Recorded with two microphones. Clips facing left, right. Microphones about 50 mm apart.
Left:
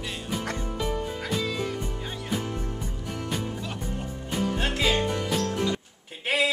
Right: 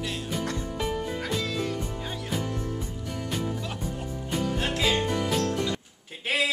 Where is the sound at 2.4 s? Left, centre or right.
Left.